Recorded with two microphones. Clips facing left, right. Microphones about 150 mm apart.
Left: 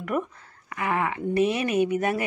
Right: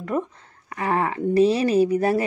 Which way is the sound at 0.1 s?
30° right (ahead or behind).